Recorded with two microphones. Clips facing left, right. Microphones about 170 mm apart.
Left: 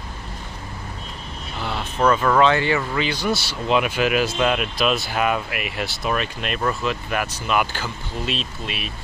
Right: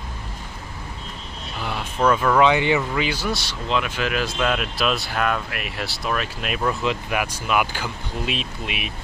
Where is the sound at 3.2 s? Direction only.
5° left (ahead or behind).